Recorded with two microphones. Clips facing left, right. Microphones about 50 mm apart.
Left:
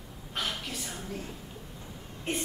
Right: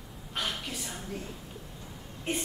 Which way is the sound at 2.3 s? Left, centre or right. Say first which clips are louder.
Even; centre.